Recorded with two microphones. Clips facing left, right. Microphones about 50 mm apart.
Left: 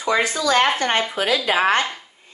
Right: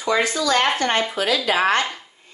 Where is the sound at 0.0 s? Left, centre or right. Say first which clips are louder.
Even; centre.